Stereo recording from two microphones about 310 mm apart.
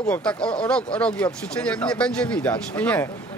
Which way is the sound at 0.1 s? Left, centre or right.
Centre.